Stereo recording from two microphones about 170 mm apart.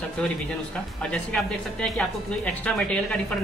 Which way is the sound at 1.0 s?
5° left (ahead or behind).